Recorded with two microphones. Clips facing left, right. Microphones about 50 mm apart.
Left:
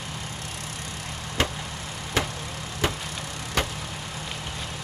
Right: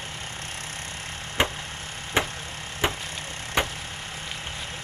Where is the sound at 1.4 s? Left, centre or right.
Right.